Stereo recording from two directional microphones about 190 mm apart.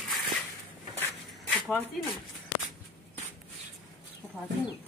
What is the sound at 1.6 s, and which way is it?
Speech, 5° right (ahead or behind).